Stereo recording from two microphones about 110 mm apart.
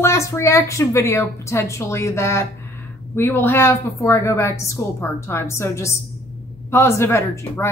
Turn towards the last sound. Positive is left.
turn(degrees=25)  # may be behind; listen again after turning